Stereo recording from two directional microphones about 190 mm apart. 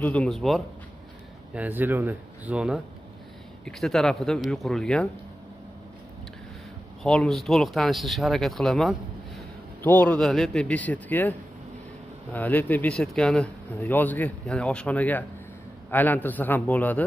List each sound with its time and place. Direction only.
0.0 s speech: 5° left (ahead or behind)
7.0 s speech: centre (ahead or behind)